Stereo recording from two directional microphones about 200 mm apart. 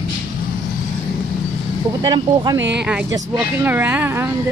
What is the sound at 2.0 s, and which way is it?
Speech, 20° right (ahead or behind).